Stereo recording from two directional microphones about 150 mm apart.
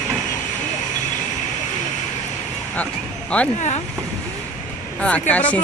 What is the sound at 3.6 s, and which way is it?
Speech, 50° left (ahead or behind).